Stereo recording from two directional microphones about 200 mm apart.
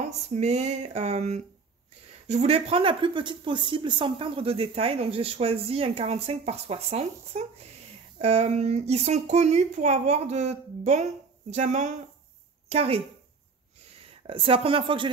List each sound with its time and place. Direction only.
0.3 s a woman's voice: 35° right (ahead or behind)
14.2 s speech: 25° right (ahead or behind)